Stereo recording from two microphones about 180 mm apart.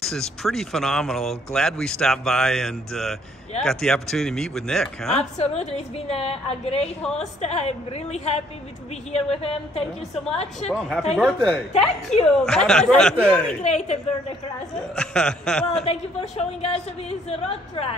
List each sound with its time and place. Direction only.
0.0 s speech: centre (ahead or behind)
5.4 s a woman's voice: 35° left (ahead or behind)
10.8 s speech: centre (ahead or behind)
13.6 s a woman's voice: 40° left (ahead or behind)
15.0 s speech: 5° left (ahead or behind)
15.8 s a woman's voice: 35° left (ahead or behind)